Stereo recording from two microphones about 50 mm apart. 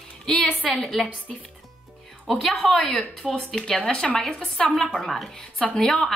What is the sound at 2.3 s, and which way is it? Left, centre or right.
A woman's voice, centre.